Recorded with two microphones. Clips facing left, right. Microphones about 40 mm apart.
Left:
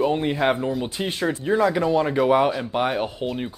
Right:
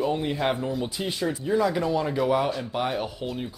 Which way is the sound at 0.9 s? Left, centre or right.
Left.